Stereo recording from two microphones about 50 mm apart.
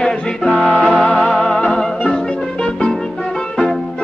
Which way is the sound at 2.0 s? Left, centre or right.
Left.